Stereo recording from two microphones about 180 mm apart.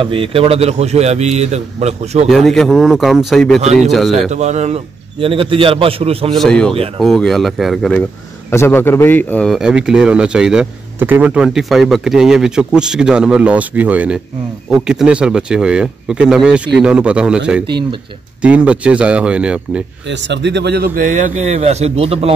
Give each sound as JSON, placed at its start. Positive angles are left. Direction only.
{"t": 0.0, "sound": "a man's voice", "side_deg": -30}
{"t": 2.2, "sound": "a man's voice", "side_deg": 0}
{"t": 4.3, "sound": "a man's voice", "side_deg": -40}
{"t": 6.3, "sound": "a man's voice", "side_deg": 5}
{"t": 8.5, "sound": "a man's voice", "side_deg": 15}
{"t": 18.4, "sound": "speech", "side_deg": -5}
{"t": 20.1, "sound": "speech", "side_deg": -80}